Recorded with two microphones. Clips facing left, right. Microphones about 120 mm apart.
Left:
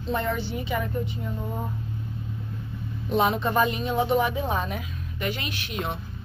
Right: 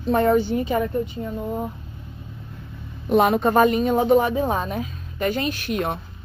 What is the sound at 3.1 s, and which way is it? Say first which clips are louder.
Speech: right 6 dB; 50° right (ahead or behind).